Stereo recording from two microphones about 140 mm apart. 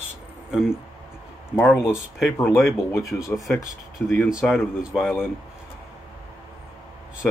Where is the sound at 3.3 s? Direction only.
Centre (ahead or behind).